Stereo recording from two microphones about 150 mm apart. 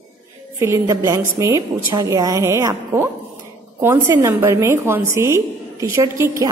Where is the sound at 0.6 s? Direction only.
20° right (ahead or behind).